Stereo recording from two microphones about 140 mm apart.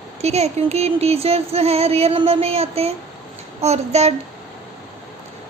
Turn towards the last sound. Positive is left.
turn(degrees=-50)  # may be behind; listen again after turning